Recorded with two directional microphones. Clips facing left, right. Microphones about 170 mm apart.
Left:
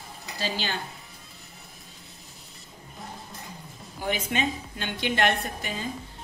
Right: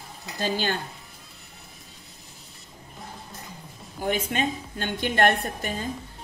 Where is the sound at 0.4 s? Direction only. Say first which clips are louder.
Right 5 dB; 50° right (ahead or behind).